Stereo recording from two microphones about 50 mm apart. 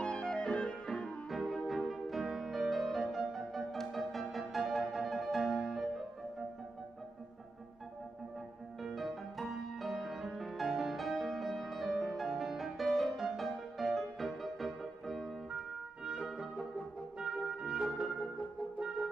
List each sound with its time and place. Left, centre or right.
0.0 s music: centre
1.3 s music: centre
8.8 s music: centre
16.1 s music: centre